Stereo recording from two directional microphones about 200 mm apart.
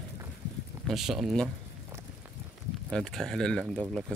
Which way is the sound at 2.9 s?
5° left (ahead or behind).